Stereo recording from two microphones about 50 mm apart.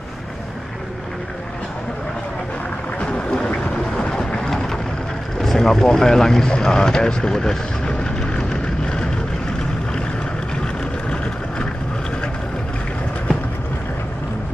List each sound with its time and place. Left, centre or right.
3.0 s boat: centre
5.4 s vehicle: centre